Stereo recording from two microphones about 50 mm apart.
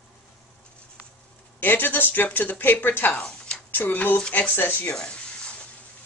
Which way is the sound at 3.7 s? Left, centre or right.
Left.